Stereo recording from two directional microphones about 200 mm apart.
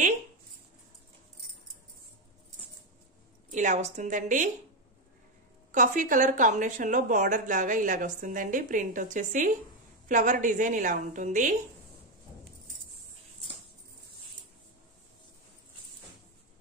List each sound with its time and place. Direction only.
3.4 s speech: 40° right (ahead or behind)
5.7 s speech: 40° right (ahead or behind)